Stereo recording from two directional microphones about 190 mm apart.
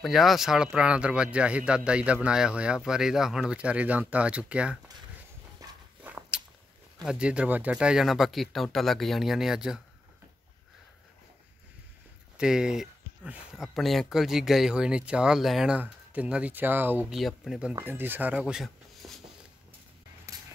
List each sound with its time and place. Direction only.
0.0 s speech: centre (ahead or behind)
5.6 s walk: 10° right (ahead or behind)
7.0 s speech: 5° right (ahead or behind)
12.4 s speech: 5° right (ahead or behind)
20.3 s a sound: 15° right (ahead or behind)